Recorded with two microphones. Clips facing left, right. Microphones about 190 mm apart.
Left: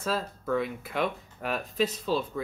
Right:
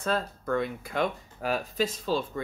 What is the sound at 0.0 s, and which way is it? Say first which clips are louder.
Speech: right 1 dB; centre (ahead or behind).